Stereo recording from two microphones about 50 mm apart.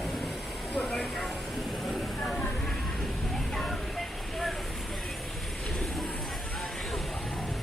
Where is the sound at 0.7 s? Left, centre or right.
Left.